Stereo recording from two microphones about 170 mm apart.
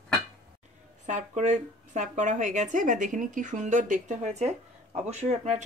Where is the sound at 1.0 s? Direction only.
45° right (ahead or behind).